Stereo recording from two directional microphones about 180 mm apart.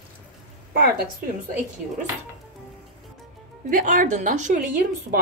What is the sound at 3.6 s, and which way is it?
Speech, 50° right (ahead or behind).